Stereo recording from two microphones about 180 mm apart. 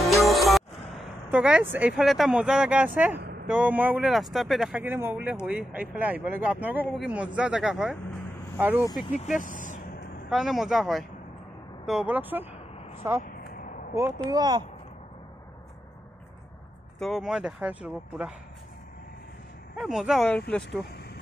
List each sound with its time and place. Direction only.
0.0 s music: centre (ahead or behind)
3.4 s speech: 10° right (ahead or behind)
9.1 s vehicle: 40° left (ahead or behind)
10.3 s speech: centre (ahead or behind)
13.2 s a sound: 50° left (ahead or behind)
13.9 s speech: 15° right (ahead or behind)
17.0 s speech: centre (ahead or behind)
19.8 s speech: 5° right (ahead or behind)